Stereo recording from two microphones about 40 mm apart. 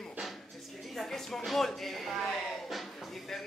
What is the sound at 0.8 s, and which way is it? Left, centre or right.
Speech, centre.